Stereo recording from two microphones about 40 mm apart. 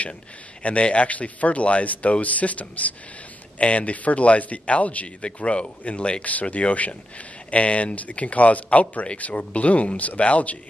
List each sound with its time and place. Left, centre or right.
0.6 s a man's voice: left